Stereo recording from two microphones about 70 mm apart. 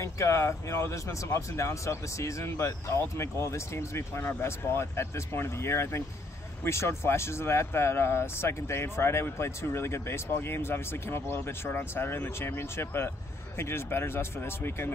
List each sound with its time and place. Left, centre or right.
0.0 s speech: left